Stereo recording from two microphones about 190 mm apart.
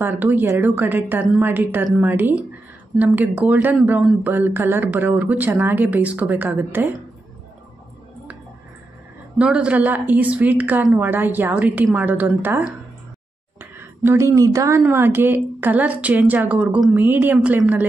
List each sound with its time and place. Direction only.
0.0 s speech: 10° right (ahead or behind)
9.4 s speech: 5° right (ahead or behind)
13.7 s a woman's voice: 15° right (ahead or behind)